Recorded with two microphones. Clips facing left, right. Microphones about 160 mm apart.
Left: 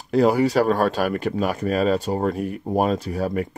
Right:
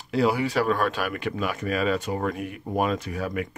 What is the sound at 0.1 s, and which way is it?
Speech, 45° left (ahead or behind).